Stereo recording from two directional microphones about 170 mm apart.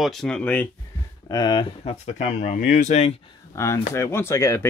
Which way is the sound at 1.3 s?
25° left (ahead or behind).